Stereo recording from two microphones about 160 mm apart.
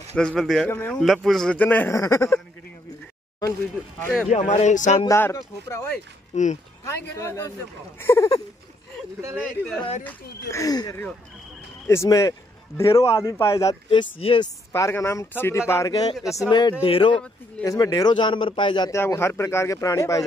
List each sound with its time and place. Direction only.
0.1 s speech: 5° left (ahead or behind)
0.7 s a man's voice: 15° left (ahead or behind)
1.0 s a man's voice: centre (ahead or behind); by 2.4 s 15° left (ahead or behind)
3.8 s speech: 5° right (ahead or behind)
4.3 s speech: 40° left (ahead or behind)
5.0 s a man's voice: 20° left (ahead or behind)
6.3 s speech: 45° left (ahead or behind)
7.2 s a man's voice: 20° left (ahead or behind)
10.5 s a man's voice: 20° left (ahead or behind)
13.8 s speech: 35° left (ahead or behind)
14.7 s a man's voice: 15° left (ahead or behind); by 17.1 s 35° left (ahead or behind)
17.1 s a man's voice: 5° left (ahead or behind)
17.6 s a man's voice: 20° left (ahead or behind)
18.9 s a man's voice: 15° left (ahead or behind)